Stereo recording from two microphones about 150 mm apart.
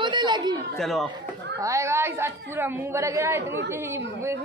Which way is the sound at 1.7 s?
20° right (ahead or behind).